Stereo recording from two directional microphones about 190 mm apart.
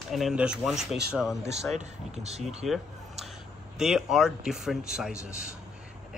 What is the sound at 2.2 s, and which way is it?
Speech, 35° right (ahead or behind).